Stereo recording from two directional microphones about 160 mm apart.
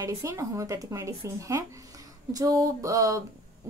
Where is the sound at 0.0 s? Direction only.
20° right (ahead or behind).